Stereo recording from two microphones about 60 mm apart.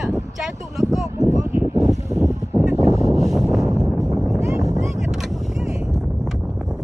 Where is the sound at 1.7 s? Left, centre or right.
Right.